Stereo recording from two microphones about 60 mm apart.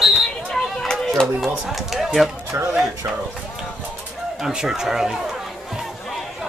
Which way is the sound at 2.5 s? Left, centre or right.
Right.